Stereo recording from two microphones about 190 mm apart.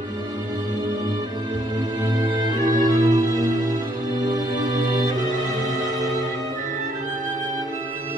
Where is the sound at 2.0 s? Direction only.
20° right (ahead or behind).